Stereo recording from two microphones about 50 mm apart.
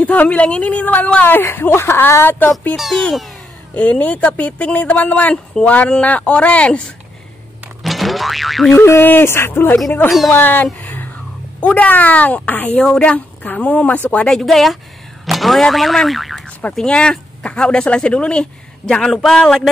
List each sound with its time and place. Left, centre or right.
0.0 s speech: left
1.2 s a woman's voice: left
2.7 s speech: centre
3.7 s speech: left
5.3 s a woman's voice: centre
6.0 s speech: left
7.8 s boing: centre
8.7 s a sound: left
9.0 s a woman's voice: left
12.7 s a woman's voice: centre
13.1 s a sound: left
13.6 s speech: left
14.3 s speech: centre
16.7 s speech: centre